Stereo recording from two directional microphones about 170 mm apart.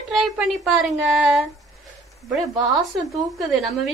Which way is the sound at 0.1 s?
Centre (ahead or behind).